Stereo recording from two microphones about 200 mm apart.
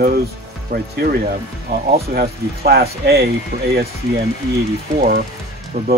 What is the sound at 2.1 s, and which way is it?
Speech, 50° right (ahead or behind).